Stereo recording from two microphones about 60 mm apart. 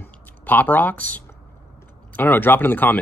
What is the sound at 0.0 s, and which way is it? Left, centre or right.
Speech, left.